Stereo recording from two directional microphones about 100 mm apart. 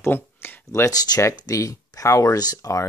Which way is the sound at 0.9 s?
35° left (ahead or behind).